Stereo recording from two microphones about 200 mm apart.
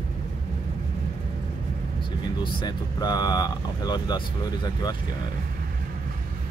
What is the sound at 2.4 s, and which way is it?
Speech, 20° left (ahead or behind).